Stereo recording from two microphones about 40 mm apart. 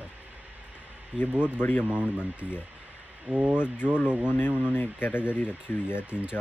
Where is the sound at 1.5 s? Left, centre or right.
Left.